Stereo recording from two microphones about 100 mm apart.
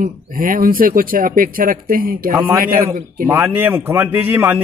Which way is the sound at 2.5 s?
35° right (ahead or behind).